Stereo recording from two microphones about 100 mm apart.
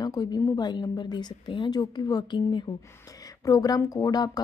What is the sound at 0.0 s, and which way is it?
Speech, 40° left (ahead or behind).